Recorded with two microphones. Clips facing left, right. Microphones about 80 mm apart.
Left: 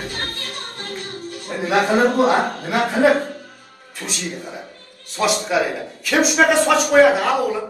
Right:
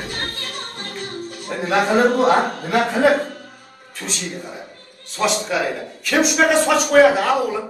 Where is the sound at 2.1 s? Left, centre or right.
Centre.